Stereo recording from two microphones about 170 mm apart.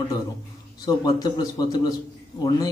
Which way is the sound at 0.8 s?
25° left (ahead or behind).